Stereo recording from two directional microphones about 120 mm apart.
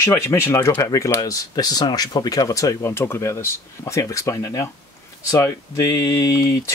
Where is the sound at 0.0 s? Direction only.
25° left (ahead or behind).